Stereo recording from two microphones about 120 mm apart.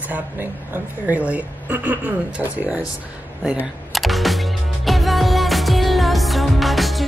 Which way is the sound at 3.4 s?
5° right (ahead or behind).